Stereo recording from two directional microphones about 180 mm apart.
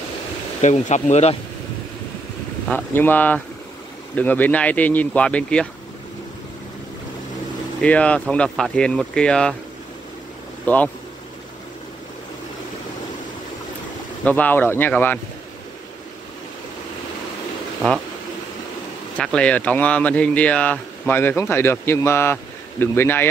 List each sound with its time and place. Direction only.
0.6 s speech: 40° left (ahead or behind)
2.7 s speech: 10° left (ahead or behind)
7.8 s speech: 5° left (ahead or behind)
10.7 s speech: 10° left (ahead or behind)
14.2 s speech: 10° left (ahead or behind)
19.1 s speech: 5° left (ahead or behind)